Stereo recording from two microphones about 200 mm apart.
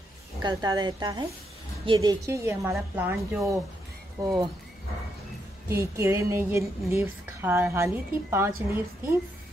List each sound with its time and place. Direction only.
0.4 s a woman's voice: 20° right (ahead or behind)
5.7 s a woman's voice: 15° right (ahead or behind)